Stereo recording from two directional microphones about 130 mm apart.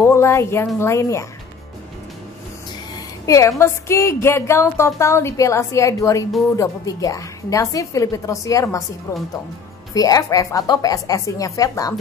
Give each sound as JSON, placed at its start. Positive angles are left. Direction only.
{"t": 0.0, "sound": "speech", "side_deg": 20}
{"t": 3.3, "sound": "speech", "side_deg": 25}
{"t": 9.9, "sound": "speech", "side_deg": 30}